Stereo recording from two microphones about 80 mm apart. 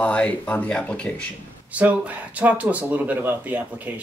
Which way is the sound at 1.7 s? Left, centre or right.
Centre.